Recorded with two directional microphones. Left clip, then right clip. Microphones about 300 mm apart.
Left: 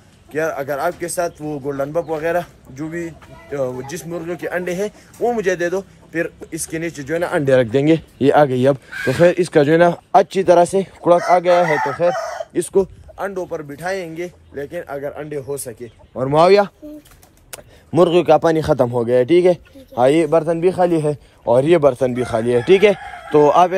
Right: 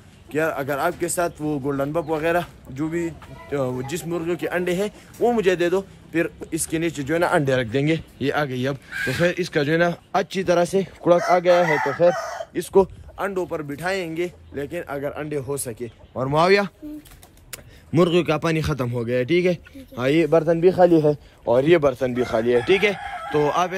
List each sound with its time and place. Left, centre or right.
0.3 s speech: centre
7.2 s speech: right
7.5 s speech: centre
11.6 s a man's voice: left
12.0 s chicken: left
13.1 s speech: centre
17.5 s a man's voice: centre